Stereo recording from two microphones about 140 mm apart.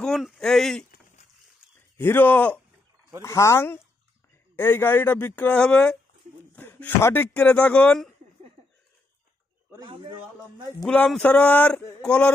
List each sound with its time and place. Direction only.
0.0 s speech: centre (ahead or behind)
2.0 s speech: 15° left (ahead or behind)
9.8 s a man's voice: 35° right (ahead or behind)
10.8 s speech: 5° left (ahead or behind)